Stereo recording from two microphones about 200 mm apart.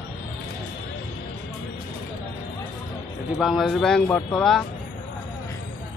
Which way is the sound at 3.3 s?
Centre (ahead or behind).